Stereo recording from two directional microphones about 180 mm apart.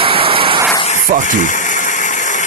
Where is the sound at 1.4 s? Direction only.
45° left (ahead or behind).